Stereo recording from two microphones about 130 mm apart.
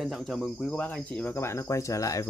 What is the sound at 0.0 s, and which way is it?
Speech, centre (ahead or behind).